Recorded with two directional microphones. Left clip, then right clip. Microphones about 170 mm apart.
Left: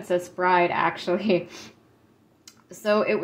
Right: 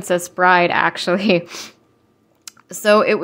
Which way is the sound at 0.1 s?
45° right (ahead or behind).